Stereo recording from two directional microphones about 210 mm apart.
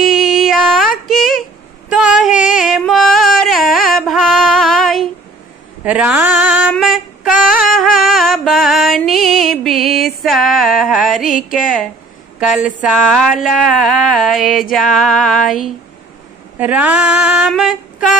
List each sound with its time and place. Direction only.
0.1 s music: centre (ahead or behind)
2.0 s female singing: centre (ahead or behind)
2.5 s music: centre (ahead or behind)
5.9 s a sound: 5° right (ahead or behind)
6.7 s female singing: centre (ahead or behind)
7.6 s music: centre (ahead or behind)
12.4 s a woman's voice: 5° right (ahead or behind)
12.8 s a sound: centre (ahead or behind)